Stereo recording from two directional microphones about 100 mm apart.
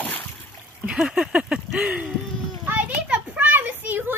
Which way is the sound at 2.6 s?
15° right (ahead or behind).